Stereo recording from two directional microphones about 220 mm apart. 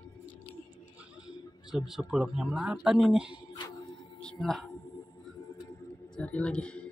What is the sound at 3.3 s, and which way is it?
Music, 20° left (ahead or behind).